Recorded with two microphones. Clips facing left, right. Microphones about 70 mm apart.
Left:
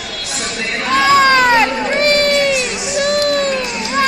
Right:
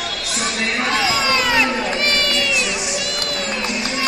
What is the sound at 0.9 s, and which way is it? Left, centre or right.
Crowd, left.